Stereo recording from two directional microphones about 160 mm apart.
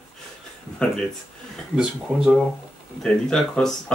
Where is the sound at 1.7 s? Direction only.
5° right (ahead or behind).